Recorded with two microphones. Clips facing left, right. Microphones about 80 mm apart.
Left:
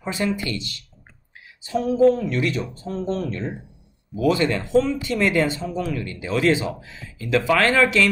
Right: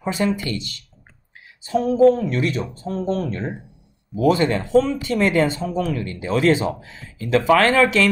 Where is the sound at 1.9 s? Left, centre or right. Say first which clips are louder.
Right 2 dB; right.